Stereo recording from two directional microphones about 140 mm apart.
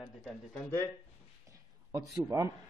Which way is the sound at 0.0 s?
Centre (ahead or behind).